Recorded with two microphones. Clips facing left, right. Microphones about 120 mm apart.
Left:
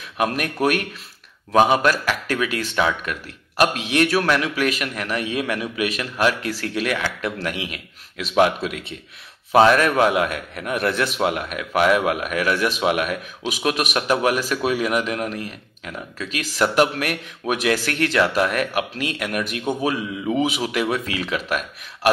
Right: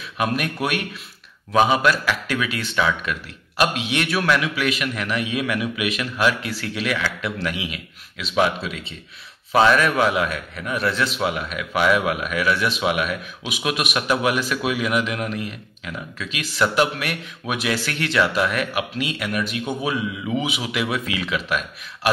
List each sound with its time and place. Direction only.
0.2 s a man's voice: 45° left (ahead or behind)